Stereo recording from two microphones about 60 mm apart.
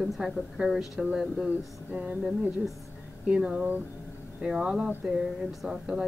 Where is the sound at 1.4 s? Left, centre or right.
Right.